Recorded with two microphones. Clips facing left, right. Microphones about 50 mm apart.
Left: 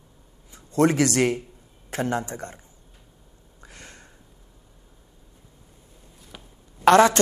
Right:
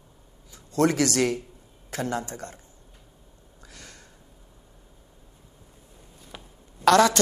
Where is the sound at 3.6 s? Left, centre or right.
Left.